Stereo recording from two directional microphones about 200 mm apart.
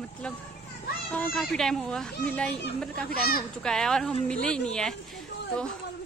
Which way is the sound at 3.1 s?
50° left (ahead or behind).